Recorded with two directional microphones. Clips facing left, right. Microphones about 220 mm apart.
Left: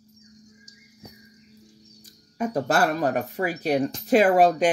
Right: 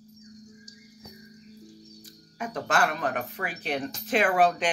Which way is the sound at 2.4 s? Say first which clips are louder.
Left 5 dB; 40° left (ahead or behind).